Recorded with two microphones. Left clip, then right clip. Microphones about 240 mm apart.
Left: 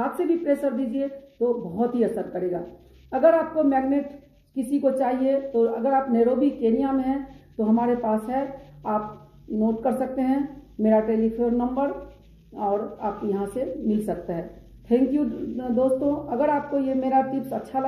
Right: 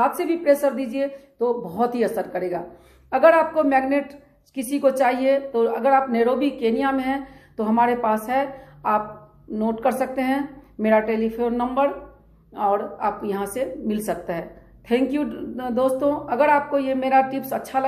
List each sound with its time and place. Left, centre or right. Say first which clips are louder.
0.0 s a woman's voice: right 4 dB; centre
9.6 s a woman's voice: right 3 dB; centre